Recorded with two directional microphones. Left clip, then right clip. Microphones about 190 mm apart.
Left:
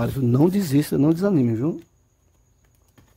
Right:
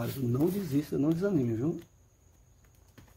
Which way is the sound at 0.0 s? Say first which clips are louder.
Left 10 dB; 45° left (ahead or behind).